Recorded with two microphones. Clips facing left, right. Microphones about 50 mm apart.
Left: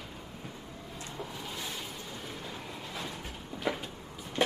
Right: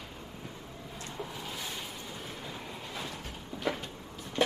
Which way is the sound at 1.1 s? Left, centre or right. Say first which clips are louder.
Right 1 dB; centre.